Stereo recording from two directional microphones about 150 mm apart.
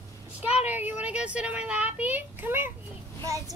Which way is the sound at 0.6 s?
10° right (ahead or behind).